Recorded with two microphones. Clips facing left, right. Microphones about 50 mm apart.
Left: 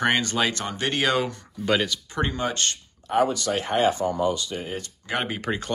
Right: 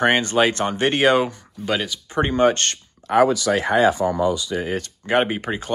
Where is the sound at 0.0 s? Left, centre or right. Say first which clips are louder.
Right 5 dB; right.